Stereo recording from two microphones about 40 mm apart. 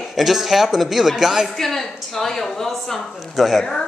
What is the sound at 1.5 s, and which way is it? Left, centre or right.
A woman's voice, centre.